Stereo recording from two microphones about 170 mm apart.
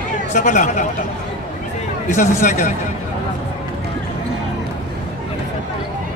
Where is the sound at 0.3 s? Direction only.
45° left (ahead or behind).